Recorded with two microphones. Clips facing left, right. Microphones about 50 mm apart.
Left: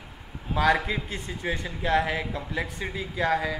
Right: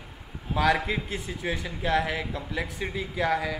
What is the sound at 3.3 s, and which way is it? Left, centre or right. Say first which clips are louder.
Speech: left 1 dB; left.